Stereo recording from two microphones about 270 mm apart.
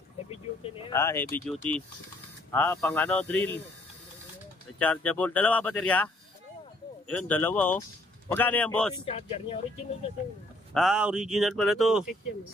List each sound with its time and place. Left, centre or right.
0.3 s a sound: centre
0.9 s speech: centre
4.7 s speech: centre
7.1 s speech: centre
9.0 s speech: left
10.7 s speech: centre